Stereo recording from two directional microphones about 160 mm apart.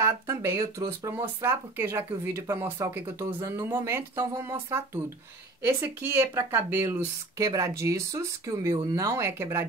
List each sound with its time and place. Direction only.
0.0 s speech: 15° right (ahead or behind)